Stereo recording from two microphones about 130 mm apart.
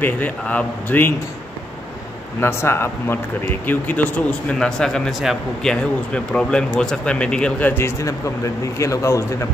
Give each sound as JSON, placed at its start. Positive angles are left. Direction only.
{"t": 0.0, "sound": "speech", "side_deg": 10}
{"t": 2.4, "sound": "speech", "side_deg": 20}